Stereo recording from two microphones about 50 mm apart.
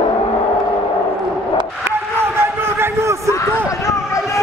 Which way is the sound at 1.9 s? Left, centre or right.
Right.